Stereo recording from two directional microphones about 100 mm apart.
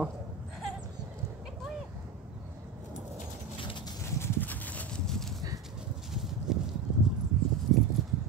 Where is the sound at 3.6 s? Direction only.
60° left (ahead or behind).